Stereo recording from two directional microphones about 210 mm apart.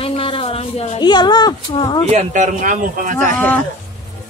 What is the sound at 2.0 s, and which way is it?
A man's voice, 35° right (ahead or behind).